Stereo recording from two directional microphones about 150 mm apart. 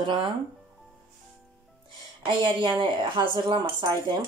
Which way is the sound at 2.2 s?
30° right (ahead or behind).